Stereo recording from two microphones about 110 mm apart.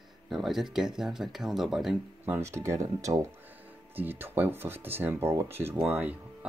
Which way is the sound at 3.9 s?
20° right (ahead or behind).